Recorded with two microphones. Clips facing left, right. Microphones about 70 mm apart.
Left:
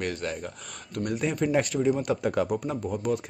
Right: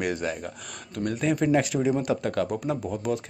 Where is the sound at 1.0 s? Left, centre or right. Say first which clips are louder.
Right 3 dB; centre.